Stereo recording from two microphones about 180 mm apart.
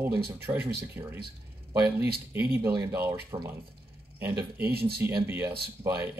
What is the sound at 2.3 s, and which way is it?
Speech, 10° right (ahead or behind).